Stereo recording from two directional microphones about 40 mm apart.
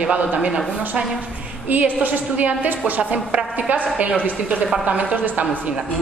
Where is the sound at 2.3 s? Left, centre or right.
Right.